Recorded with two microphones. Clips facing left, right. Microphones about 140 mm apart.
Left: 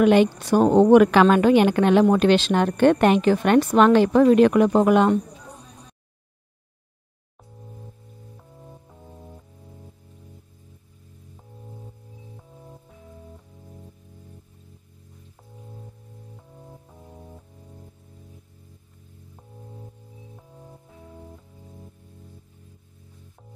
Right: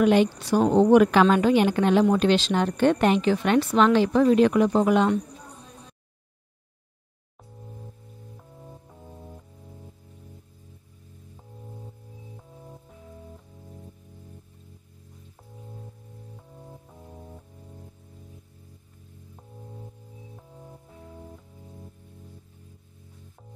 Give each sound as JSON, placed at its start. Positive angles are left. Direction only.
{"t": 0.0, "sound": "a woman's voice", "side_deg": 65}
{"t": 7.6, "sound": "music", "side_deg": 0}
{"t": 11.3, "sound": "music", "side_deg": 0}
{"t": 16.3, "sound": "music", "side_deg": 0}
{"t": 19.3, "sound": "music", "side_deg": 0}